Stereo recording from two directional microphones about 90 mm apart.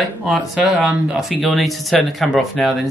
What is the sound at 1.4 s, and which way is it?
Speech, centre (ahead or behind).